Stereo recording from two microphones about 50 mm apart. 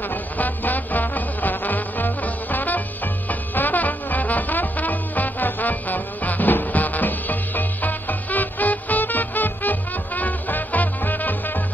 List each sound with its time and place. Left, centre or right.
0.1 s music: left